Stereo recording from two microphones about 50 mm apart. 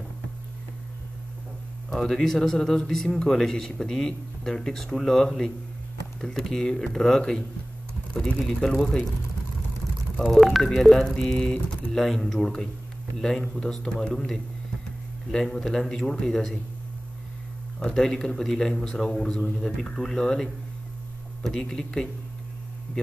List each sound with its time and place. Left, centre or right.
1.9 s speech: centre
10.1 s speech: centre
11.9 s speech: centre
17.7 s speech: centre